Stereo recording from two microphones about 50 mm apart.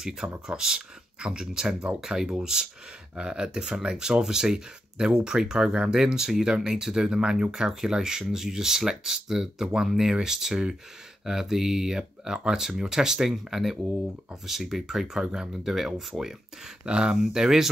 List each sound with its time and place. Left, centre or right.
0.5 s speech: centre
16.8 s speech: centre